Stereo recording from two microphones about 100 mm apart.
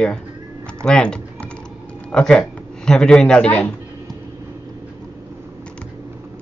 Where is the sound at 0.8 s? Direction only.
10° left (ahead or behind).